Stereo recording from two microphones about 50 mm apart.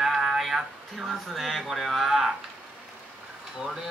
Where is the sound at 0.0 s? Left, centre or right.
Centre.